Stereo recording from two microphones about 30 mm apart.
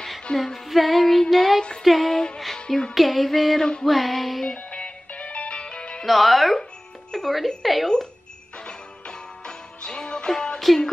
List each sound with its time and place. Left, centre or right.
0.3 s female singing: left
0.7 s music: centre
2.3 s music: centre
2.9 s music: centre
4.6 s music: left
6.0 s music: centre
8.6 s music: left
10.7 s music: centre